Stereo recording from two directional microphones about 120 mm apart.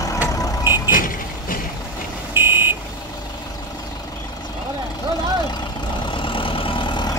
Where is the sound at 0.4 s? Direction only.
35° left (ahead or behind).